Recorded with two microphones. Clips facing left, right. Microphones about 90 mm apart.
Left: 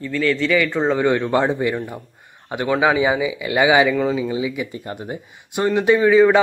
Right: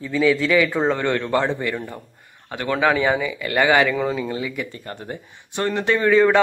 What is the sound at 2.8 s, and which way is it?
Speech, 10° left (ahead or behind).